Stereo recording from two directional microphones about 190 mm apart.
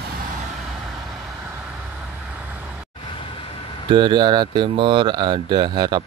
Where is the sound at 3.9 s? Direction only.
25° right (ahead or behind).